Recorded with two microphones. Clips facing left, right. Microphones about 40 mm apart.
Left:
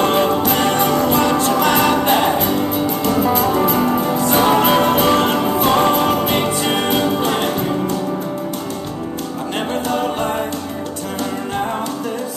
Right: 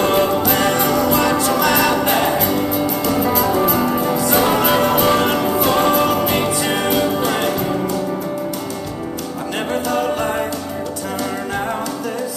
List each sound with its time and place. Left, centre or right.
0.0 s music: left
9.8 s a capella: left